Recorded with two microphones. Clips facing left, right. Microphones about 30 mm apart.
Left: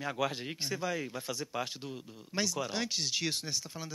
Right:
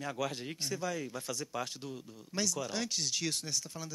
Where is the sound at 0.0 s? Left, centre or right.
Left.